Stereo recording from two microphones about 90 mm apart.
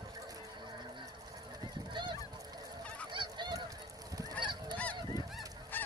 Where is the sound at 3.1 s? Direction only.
60° right (ahead or behind).